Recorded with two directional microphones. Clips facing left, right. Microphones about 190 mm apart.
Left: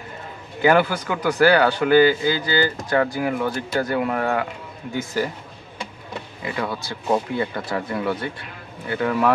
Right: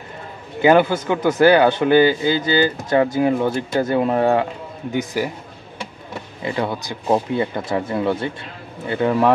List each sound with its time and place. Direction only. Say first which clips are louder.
0.6 s speech: right 4 dB; 20° right (ahead or behind)
4.9 s speech: right 2 dB; 15° right (ahead or behind)
6.4 s speech: right 4 dB; 25° right (ahead or behind)